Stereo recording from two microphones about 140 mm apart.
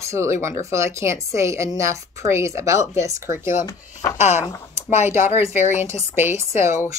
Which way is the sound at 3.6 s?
25° left (ahead or behind).